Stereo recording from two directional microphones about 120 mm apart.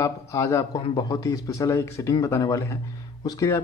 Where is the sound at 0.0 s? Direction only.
25° left (ahead or behind).